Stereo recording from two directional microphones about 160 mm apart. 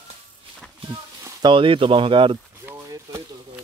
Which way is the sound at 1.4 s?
30° right (ahead or behind).